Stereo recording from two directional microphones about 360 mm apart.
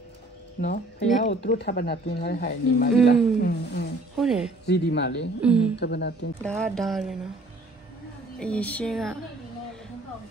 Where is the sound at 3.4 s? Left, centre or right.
Left.